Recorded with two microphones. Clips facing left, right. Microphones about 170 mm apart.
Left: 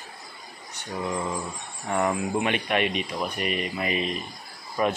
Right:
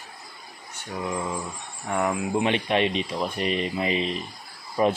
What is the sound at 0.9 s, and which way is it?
Speech, 5° right (ahead or behind).